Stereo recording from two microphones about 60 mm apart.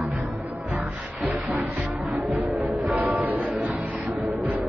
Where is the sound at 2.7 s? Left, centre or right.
Centre.